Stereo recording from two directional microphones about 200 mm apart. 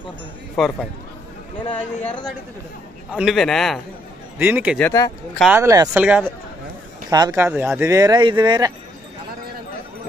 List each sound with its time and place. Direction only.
0.6 s a man's voice: centre (ahead or behind)
3.1 s a man's voice: 5° right (ahead or behind)
4.4 s speech: 10° right (ahead or behind)
4.7 s speech: 15° left (ahead or behind)
5.4 s speech: 10° right (ahead or behind)
7.1 s speech: 20° right (ahead or behind)